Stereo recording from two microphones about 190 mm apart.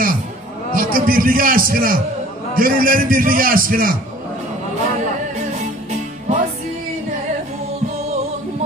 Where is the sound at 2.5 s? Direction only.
50° right (ahead or behind).